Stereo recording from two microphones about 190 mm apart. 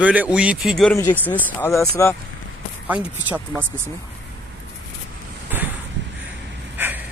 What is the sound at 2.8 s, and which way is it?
Speech, 10° right (ahead or behind).